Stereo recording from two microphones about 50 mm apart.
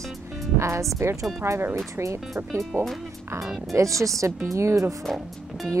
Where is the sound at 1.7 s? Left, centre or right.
Right.